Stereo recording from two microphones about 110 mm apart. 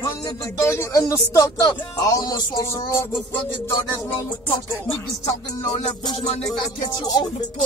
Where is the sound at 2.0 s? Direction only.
35° left (ahead or behind).